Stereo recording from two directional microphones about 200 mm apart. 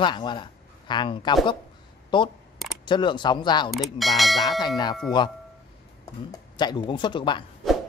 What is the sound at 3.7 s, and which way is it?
Speech, centre (ahead or behind).